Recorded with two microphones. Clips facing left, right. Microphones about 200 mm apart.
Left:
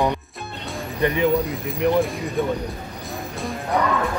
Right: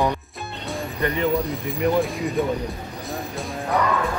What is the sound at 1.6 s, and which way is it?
Speech, centre (ahead or behind).